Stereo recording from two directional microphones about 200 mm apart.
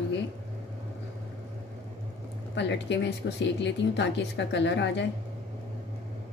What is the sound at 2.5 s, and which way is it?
Speech, 60° left (ahead or behind).